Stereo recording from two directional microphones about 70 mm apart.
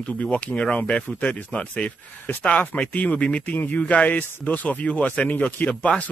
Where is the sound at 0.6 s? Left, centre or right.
Centre.